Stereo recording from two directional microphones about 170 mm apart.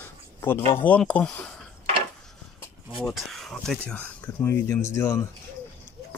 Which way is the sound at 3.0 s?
Centre (ahead or behind).